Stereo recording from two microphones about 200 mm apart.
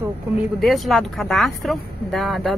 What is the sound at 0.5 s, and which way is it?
A woman's voice, centre (ahead or behind).